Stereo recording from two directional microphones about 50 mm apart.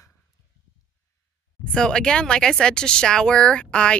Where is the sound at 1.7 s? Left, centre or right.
Centre.